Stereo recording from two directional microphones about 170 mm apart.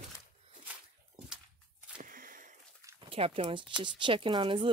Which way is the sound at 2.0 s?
55° right (ahead or behind).